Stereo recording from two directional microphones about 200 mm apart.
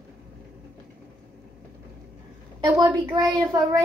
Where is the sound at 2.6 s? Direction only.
20° right (ahead or behind).